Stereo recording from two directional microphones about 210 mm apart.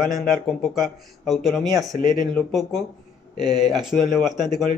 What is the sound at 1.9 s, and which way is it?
Speech, 35° left (ahead or behind).